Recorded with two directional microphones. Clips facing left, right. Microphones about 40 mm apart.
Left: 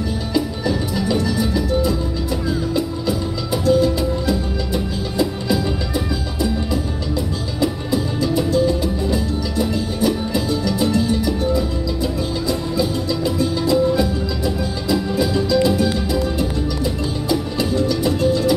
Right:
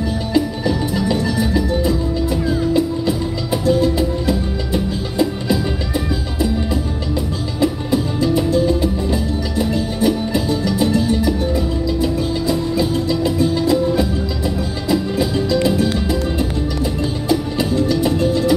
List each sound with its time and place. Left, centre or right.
2.2 s music: right
8.2 s music: right
12.7 s music: right
17.6 s music: right